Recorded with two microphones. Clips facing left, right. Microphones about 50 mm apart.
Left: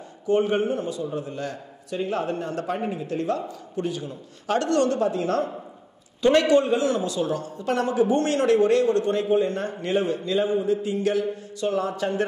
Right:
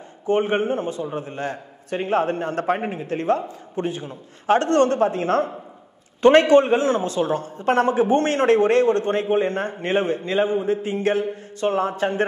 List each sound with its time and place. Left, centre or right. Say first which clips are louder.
0.3 s a woman's voice: right 1 dB; right